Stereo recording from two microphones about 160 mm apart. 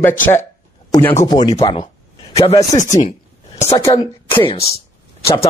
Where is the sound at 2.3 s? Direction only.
40° left (ahead or behind).